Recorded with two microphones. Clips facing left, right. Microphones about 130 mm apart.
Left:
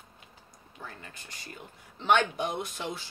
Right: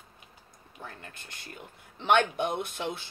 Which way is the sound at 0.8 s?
55° right (ahead or behind).